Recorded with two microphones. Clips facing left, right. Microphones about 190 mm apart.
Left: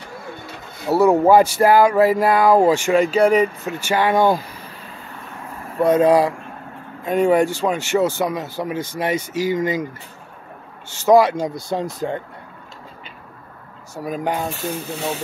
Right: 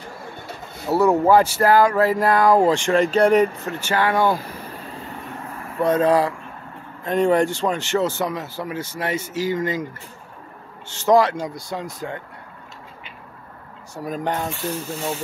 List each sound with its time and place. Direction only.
0.8 s speech: 10° left (ahead or behind)
5.8 s speech: 15° left (ahead or behind)
11.1 s speech: 10° left (ahead or behind); by 12.2 s 25° left (ahead or behind)
13.9 s speech: 10° left (ahead or behind)